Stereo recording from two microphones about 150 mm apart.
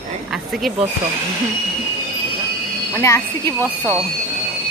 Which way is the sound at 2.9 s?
20° left (ahead or behind).